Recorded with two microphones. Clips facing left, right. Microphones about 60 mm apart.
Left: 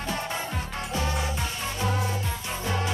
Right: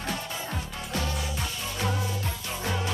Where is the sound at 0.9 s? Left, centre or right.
Left.